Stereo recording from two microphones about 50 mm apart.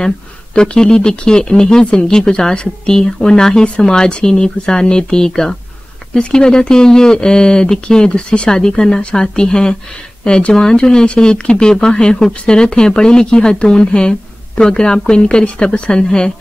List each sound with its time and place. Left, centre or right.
0.6 s speech: centre